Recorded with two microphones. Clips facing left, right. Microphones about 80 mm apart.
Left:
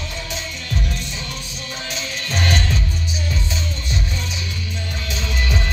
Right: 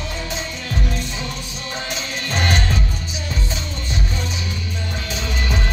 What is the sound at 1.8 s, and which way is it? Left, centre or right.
Music, right.